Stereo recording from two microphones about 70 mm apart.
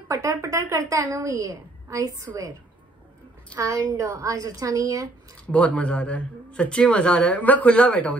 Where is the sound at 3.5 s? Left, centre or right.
Right.